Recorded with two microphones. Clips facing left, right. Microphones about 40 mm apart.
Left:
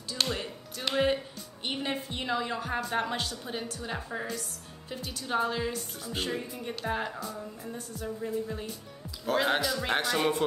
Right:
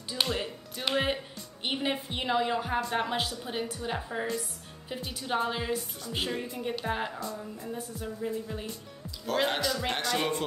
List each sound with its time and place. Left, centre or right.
0.1 s music: centre
1.6 s a woman's voice: centre
5.8 s a woman's voice: centre
7.2 s a woman's voice: centre
7.7 s a woman's voice: centre
9.4 s a woman's voice: centre